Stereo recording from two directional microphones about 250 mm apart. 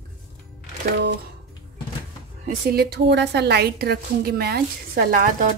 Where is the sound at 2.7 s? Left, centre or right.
Right.